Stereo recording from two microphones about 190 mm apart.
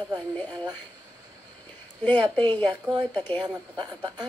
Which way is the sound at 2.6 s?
25° right (ahead or behind).